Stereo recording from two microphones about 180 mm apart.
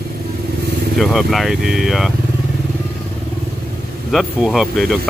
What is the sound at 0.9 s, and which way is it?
Speech, centre (ahead or behind).